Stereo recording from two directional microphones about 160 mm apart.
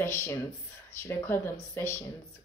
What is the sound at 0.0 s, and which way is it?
Speech, 15° left (ahead or behind).